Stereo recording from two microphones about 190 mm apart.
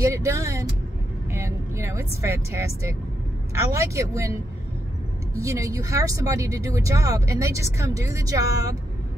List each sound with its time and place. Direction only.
0.0 s speech: 15° right (ahead or behind)